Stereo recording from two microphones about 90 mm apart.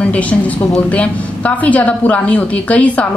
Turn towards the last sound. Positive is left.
turn(degrees=15)  # may be behind; listen again after turning